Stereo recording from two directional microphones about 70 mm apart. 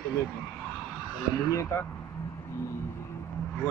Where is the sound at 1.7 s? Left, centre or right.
Left.